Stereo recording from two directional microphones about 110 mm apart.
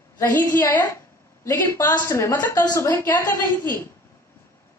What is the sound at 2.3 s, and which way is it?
A woman's voice, 20° left (ahead or behind).